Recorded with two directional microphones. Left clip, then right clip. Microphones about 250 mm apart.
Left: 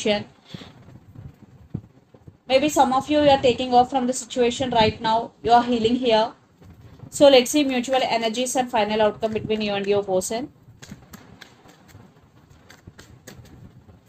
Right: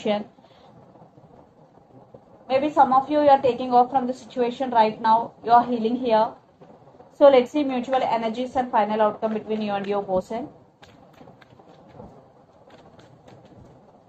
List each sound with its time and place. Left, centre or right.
2.4 s a woman's voice: left